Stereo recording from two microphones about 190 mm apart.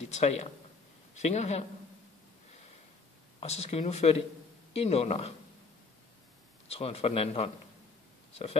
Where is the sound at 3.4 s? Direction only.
35° left (ahead or behind).